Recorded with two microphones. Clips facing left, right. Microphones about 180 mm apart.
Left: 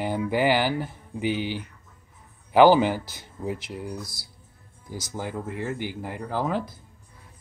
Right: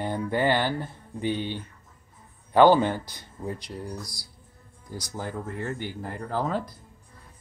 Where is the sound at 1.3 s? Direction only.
90° left.